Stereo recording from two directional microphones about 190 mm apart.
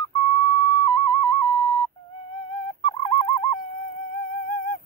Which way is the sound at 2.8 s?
30° left (ahead or behind).